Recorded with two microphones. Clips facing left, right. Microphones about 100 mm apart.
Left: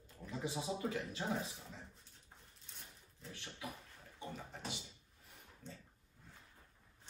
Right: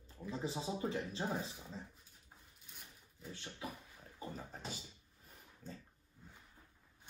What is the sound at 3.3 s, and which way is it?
Speech, 30° right (ahead or behind).